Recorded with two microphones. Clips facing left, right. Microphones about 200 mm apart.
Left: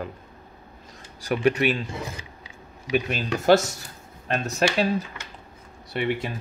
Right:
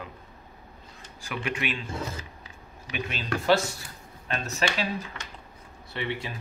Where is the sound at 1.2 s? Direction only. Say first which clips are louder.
Left 10 dB; 40° left (ahead or behind).